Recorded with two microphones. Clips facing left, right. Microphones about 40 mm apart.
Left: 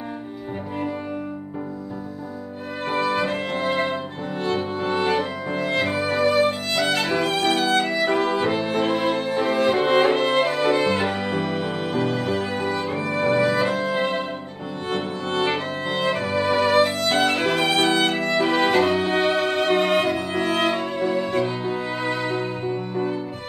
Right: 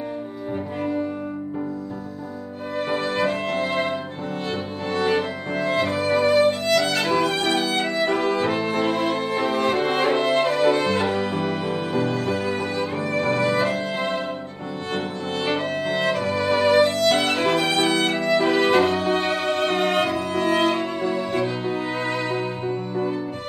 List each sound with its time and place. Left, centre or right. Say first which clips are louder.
3.1 s music: even; centre
15.3 s music: even; centre
16.1 s violin: left 2 dB; centre
22.7 s music: even; centre